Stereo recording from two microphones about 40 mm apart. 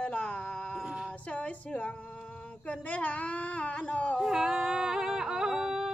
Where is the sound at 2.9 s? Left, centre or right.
Left.